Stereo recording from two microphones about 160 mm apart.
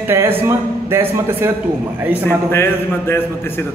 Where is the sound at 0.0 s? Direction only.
15° right (ahead or behind).